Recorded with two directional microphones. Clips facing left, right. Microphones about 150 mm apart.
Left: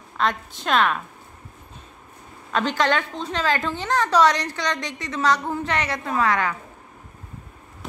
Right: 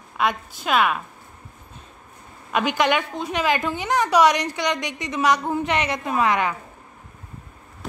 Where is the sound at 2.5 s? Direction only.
15° right (ahead or behind).